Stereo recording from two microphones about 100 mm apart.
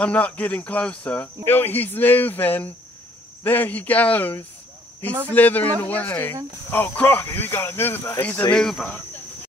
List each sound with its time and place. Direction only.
0.0 s speech: 15° left (ahead or behind)